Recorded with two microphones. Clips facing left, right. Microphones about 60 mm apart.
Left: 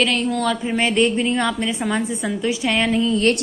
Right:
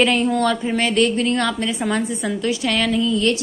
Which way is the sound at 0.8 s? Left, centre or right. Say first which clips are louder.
Left 2 dB; left.